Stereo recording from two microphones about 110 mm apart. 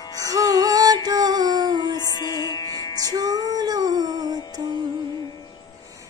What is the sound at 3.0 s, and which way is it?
Music, 35° right (ahead or behind).